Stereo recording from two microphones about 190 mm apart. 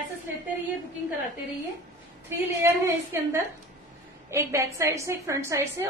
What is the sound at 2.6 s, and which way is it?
A woman's voice, 15° right (ahead or behind).